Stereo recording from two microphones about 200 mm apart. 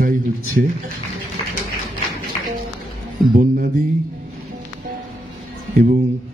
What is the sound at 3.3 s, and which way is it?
Speech, 45° right (ahead or behind).